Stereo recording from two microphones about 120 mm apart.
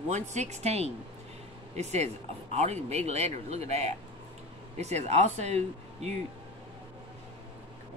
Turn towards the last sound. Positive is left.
turn(degrees=-65)  # may be behind; listen again after turning